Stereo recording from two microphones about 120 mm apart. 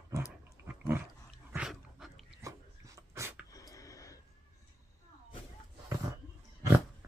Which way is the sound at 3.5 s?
30° left (ahead or behind).